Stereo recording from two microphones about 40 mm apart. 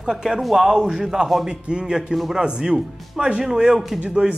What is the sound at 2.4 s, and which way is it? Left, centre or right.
Speech, right.